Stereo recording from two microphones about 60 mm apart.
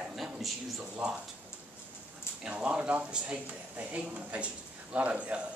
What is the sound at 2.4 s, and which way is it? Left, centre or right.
Speech, centre.